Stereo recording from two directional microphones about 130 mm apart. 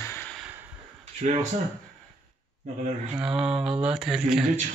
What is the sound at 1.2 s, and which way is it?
Speech, 60° right (ahead or behind).